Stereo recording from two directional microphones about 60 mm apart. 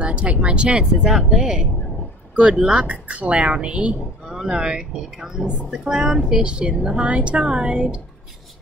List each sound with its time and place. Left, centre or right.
0.0 s speech: right
1.0 s speech: centre